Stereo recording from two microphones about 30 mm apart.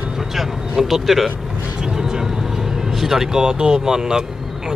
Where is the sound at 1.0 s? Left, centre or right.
Centre.